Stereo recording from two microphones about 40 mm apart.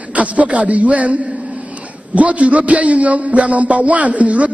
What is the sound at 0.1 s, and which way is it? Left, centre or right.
A man's voice, right.